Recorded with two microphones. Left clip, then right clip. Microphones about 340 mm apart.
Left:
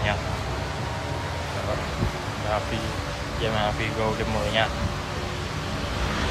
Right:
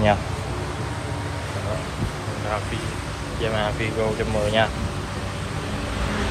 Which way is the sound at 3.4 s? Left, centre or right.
Centre.